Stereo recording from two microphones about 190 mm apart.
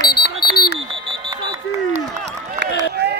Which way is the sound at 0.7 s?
30° right (ahead or behind).